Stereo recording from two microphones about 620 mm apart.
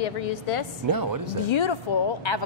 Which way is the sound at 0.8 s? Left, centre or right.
Right.